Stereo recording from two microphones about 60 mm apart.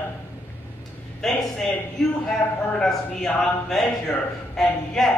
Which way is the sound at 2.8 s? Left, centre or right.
Centre.